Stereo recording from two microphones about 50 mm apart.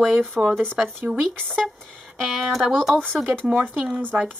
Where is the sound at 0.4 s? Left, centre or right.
Right.